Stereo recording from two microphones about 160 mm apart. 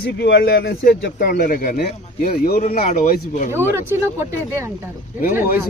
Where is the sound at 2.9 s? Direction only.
60° left (ahead or behind).